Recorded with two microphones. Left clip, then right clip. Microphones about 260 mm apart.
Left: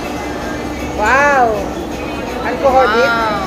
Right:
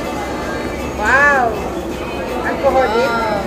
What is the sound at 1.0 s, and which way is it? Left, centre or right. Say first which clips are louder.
Music: left 1 dB; left.